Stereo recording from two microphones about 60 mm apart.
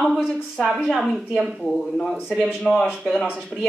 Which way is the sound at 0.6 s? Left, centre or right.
Centre.